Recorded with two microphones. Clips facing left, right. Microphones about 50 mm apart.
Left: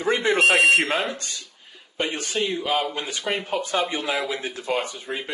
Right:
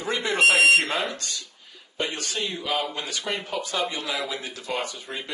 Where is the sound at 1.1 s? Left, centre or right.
Left.